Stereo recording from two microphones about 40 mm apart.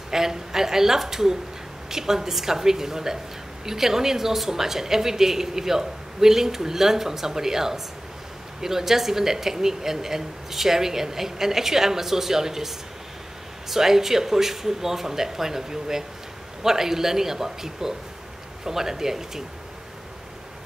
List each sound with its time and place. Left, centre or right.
0.1 s speech: centre